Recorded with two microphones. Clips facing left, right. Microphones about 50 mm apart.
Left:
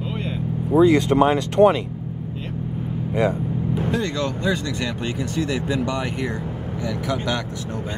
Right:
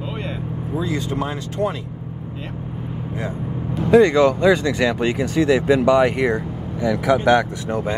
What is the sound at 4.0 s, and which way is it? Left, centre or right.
Speech, right.